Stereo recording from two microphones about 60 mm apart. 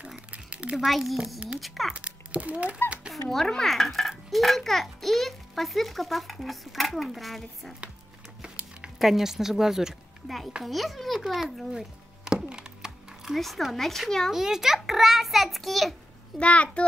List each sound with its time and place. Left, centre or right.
0.0 s a sound: right
0.7 s a child's voice: centre
2.0 s speech: right
3.3 s a child's voice: centre
8.4 s a sound: centre
8.9 s a child's voice: centre
12.3 s thunk: centre
13.4 s a child's voice: centre
14.3 s a child's voice: centre
16.3 s a child's voice: left